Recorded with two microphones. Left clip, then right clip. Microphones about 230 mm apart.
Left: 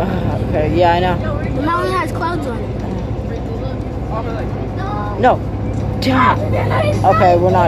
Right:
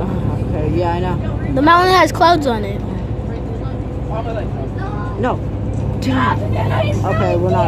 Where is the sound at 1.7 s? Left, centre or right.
Right.